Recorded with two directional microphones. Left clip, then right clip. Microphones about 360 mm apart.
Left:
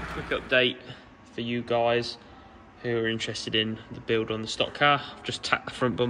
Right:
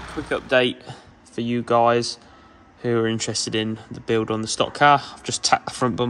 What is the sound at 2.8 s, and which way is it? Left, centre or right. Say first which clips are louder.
Speech: right 6 dB; right.